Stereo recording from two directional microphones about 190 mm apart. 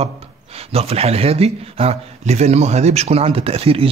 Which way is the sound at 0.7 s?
35° right (ahead or behind).